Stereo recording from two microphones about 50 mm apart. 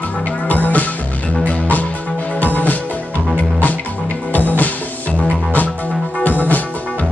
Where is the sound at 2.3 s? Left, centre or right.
Left.